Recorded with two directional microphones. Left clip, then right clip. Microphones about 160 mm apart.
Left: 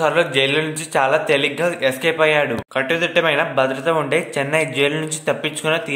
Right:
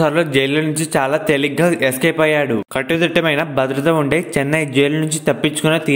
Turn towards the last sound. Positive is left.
turn(degrees=-35)  # may be behind; listen again after turning